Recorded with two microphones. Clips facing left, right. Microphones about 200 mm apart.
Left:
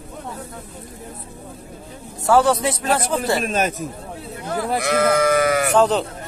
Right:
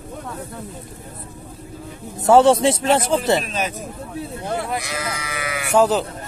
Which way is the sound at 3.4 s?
50° left (ahead or behind).